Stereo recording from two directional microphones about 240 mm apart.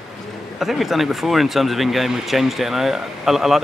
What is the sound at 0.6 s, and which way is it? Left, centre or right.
Speech, centre.